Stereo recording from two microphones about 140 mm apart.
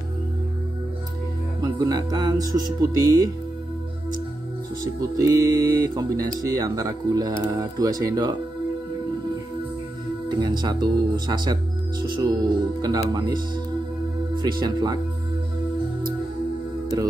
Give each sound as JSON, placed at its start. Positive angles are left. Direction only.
{"t": 1.6, "sound": "speech", "side_deg": -25}
{"t": 5.0, "sound": "speech", "side_deg": -25}
{"t": 10.2, "sound": "speech", "side_deg": -30}